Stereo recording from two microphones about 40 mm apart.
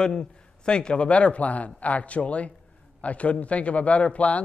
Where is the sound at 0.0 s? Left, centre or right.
Left.